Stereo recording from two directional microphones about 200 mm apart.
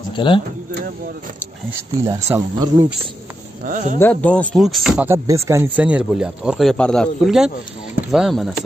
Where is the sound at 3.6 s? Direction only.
40° right (ahead or behind).